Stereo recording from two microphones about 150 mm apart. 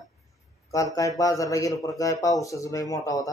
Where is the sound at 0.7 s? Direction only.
20° left (ahead or behind).